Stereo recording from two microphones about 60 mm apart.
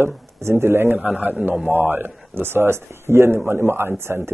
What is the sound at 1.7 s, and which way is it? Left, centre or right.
Speech, right.